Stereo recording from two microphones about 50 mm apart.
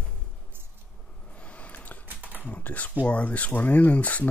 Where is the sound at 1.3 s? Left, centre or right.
Left.